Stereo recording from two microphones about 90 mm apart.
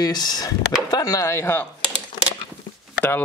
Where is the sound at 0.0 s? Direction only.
50° left (ahead or behind); by 1.7 s 25° left (ahead or behind).